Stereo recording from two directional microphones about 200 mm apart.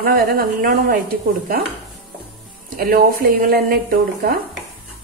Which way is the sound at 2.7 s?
45° right (ahead or behind).